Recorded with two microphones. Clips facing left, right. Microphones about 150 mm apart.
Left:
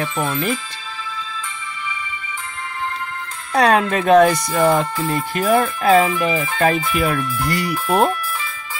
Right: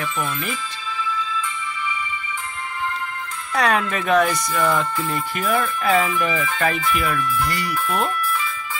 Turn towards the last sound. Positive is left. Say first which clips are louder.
# left 3 dB
turn(degrees=5)  # may be behind; listen again after turning